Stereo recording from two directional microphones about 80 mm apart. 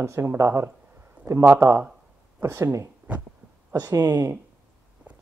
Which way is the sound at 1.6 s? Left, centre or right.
Right.